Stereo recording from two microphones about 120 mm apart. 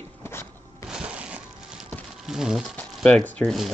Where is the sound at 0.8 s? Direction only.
10° right (ahead or behind).